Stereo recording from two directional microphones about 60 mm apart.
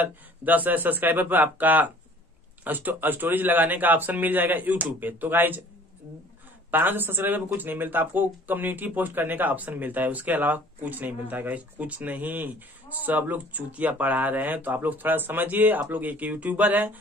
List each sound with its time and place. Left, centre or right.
0.0 s a man's voice: right
6.7 s speech: right